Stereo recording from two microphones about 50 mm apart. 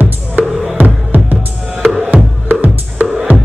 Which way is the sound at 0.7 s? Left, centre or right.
Right.